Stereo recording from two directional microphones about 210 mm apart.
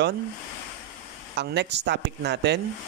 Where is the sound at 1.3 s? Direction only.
55° right (ahead or behind).